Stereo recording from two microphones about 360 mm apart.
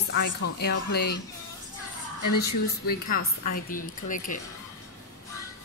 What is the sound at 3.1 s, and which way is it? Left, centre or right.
Speech, left.